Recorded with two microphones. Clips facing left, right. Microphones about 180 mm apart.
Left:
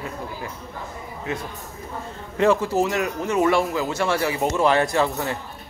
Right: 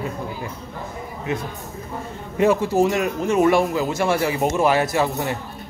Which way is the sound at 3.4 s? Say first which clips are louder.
Right 3 dB; 15° right (ahead or behind).